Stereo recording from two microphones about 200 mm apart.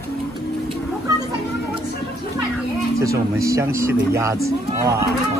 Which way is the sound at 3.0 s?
15° right (ahead or behind).